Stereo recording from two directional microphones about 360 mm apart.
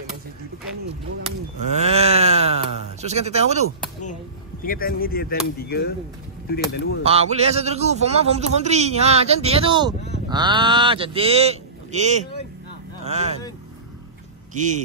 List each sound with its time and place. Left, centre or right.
1.8 s a sound: centre
4.6 s speech: left
7.1 s a man's voice: centre